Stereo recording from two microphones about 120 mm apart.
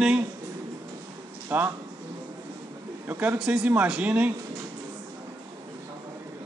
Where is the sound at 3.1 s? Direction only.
15° right (ahead or behind).